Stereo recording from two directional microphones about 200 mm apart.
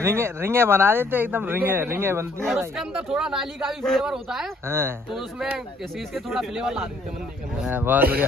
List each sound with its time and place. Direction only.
0.0 s speech: 15° right (ahead or behind)
5.1 s speech: centre (ahead or behind)